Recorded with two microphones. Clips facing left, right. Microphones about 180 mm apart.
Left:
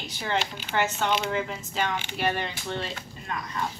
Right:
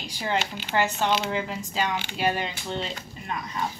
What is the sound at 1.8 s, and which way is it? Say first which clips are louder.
Speech: right 1 dB; 15° right (ahead or behind).